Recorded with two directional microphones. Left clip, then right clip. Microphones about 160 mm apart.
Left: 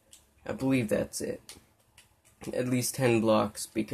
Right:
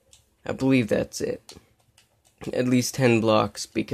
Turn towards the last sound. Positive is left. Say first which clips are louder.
# right 5 dB
turn(degrees=-45)  # may be behind; listen again after turning